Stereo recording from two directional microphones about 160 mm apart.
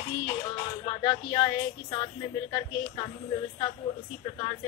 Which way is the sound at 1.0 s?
30° left (ahead or behind).